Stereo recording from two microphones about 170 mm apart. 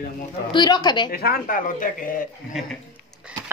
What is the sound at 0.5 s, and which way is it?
Speech, 25° left (ahead or behind).